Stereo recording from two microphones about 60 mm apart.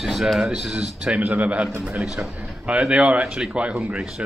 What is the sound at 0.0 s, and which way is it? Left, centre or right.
A man's voice, centre.